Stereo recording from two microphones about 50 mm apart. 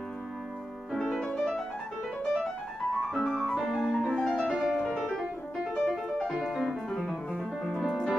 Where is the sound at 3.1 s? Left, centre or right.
Centre.